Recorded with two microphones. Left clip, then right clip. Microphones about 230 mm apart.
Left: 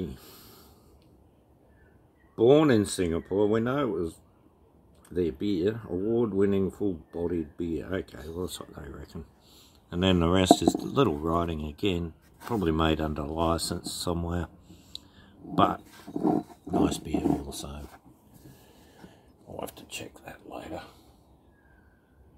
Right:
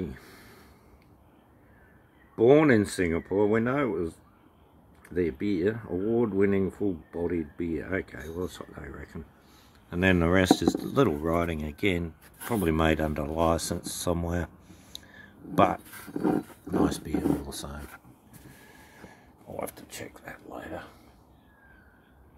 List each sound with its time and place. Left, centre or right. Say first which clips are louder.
2.3 s speech: right 1 dB; centre
15.1 s a sound: right 1 dB; centre
16.0 s livestock: left 2 dB; right
16.6 s speech: even; centre
20.2 s speech: even; centre